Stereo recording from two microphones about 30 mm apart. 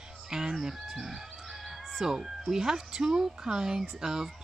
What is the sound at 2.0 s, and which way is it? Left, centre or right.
Speech, centre.